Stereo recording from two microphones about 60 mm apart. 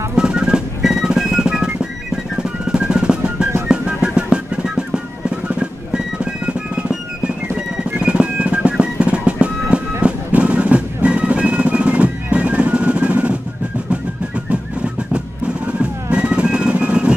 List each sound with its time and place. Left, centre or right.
0.1 s drum: centre
3.6 s music: centre
14.5 s music: centre